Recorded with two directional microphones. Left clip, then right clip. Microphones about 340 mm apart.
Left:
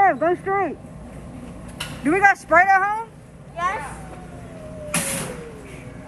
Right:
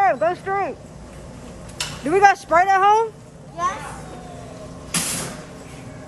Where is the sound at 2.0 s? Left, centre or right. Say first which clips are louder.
Right 2 dB; centre.